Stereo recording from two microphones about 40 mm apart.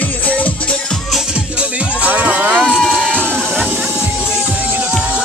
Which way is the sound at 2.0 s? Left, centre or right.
Right.